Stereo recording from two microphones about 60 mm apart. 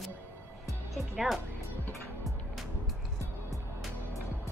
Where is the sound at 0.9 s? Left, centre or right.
Centre.